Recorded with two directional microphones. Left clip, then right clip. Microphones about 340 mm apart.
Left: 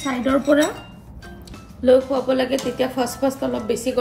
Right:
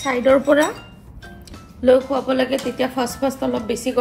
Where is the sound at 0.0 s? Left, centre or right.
Centre.